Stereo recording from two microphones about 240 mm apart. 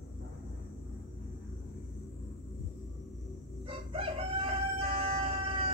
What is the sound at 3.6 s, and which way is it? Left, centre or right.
Crowing, right.